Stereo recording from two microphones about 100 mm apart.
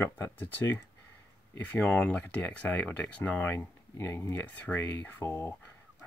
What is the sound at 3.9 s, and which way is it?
Speech, 30° left (ahead or behind).